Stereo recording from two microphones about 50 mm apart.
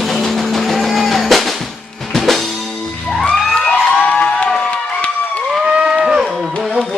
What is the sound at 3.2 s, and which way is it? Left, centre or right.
Cheering, centre.